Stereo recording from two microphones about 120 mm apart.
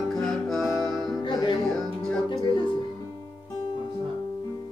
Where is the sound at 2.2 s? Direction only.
40° left (ahead or behind).